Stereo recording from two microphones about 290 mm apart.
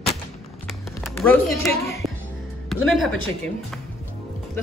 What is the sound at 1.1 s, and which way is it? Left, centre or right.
Speech, centre.